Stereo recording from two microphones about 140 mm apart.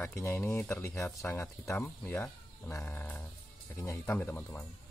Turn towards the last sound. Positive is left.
turn(degrees=15)  # may be behind; listen again after turning